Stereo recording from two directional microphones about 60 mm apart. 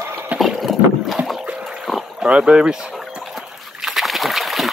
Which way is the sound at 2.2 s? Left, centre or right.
Centre.